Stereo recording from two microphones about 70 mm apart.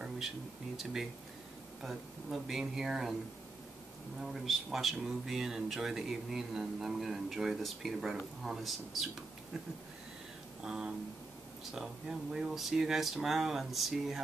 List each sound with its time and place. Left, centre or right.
1.8 s speech: centre
4.2 s speech: centre
10.6 s a sound: centre
11.7 s speech: centre